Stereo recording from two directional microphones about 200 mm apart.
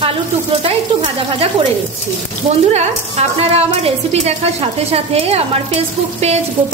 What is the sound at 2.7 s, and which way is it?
A woman's voice, 35° right (ahead or behind).